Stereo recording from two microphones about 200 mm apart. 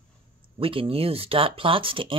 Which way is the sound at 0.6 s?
25° right (ahead or behind).